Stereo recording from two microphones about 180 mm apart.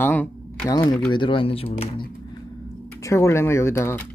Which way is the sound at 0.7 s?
25° left (ahead or behind).